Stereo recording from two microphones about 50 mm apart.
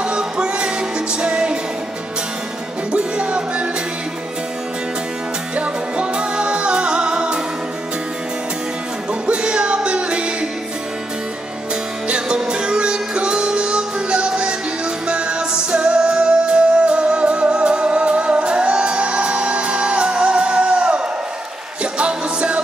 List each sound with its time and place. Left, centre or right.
0.0 s music: centre
2.9 s music: right
5.6 s music: right
9.2 s music: centre
12.1 s music: centre